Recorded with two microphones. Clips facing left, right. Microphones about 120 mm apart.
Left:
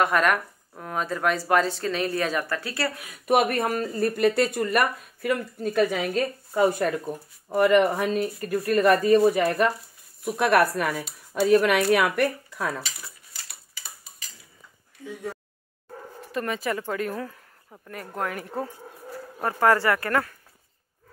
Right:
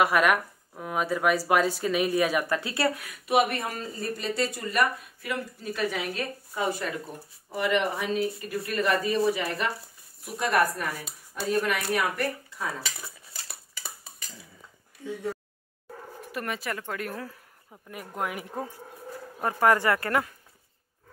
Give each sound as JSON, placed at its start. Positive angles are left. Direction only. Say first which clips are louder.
{"t": 0.0, "sound": "speech", "louder": "even", "side_deg": -5}
{"t": 3.3, "sound": "speech", "louder": "left 3 dB", "side_deg": 50}
{"t": 16.3, "sound": "speech", "louder": "left 5 dB", "side_deg": -5}